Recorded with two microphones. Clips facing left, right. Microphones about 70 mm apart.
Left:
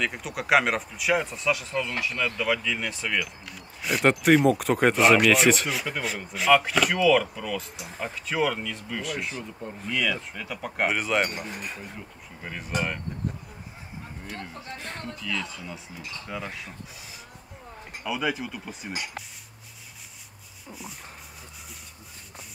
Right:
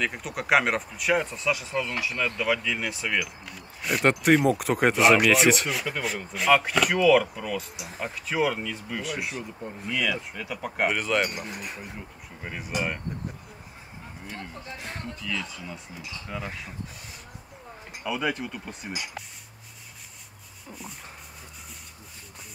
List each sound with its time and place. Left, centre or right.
0.0 s speech: centre
10.9 s speech: centre
11.3 s speech: centre
14.4 s speech: centre
18.0 s speech: centre